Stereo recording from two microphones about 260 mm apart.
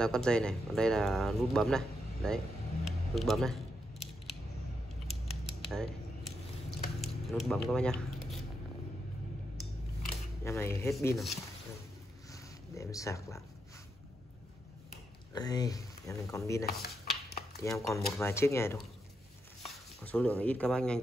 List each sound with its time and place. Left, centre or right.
0.0 s speech: centre
5.7 s a sound: centre
10.4 s speech: centre
12.3 s zipper: centre
15.3 s speech: centre
16.6 s a sound: left
17.6 s speech: centre